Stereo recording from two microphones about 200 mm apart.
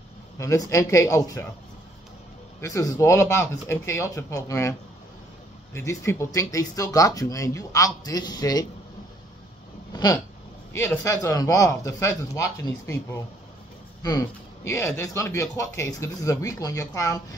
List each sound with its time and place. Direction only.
0.4 s a man's voice: 15° left (ahead or behind)
2.6 s a man's voice: 15° left (ahead or behind)
5.8 s a man's voice: 15° left (ahead or behind)
10.7 s a man's voice: 15° left (ahead or behind)